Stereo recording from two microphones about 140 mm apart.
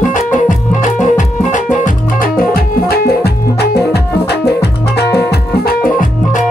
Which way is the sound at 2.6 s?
90° left.